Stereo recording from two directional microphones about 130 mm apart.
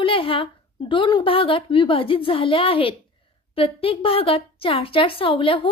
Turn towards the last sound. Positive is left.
turn(degrees=40)  # may be behind; listen again after turning